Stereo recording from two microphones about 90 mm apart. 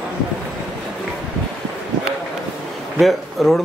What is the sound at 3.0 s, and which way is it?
Speech, centre (ahead or behind).